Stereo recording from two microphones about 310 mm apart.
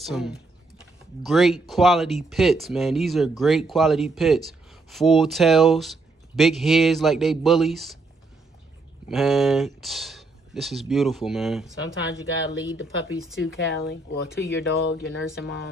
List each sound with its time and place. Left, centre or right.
0.0 s speech: centre
9.1 s speech: centre
12.8 s speech: centre
13.4 s speech: left